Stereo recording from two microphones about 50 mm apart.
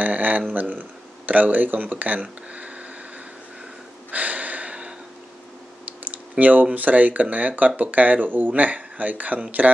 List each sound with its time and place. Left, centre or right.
0.0 s speech: right
2.2 s a sound: right
4.1 s breathing: right
5.9 s speech: right